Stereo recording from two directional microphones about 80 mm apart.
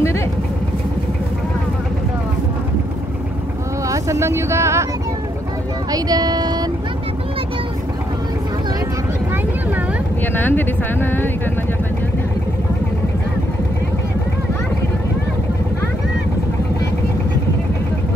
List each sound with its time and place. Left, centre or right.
3.9 s vehicle: right
5.9 s music: right
10.2 s speech: left